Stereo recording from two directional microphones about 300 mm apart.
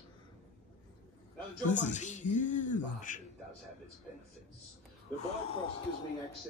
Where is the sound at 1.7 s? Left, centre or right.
Left.